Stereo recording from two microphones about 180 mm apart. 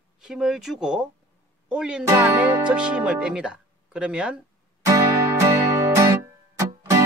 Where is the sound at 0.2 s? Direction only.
5° right (ahead or behind).